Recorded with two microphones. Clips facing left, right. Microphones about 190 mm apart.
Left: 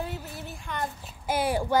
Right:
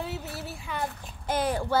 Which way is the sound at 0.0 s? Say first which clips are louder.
Right 1 dB; 5° right (ahead or behind).